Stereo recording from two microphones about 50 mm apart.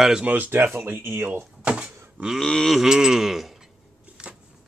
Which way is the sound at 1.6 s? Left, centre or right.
Right.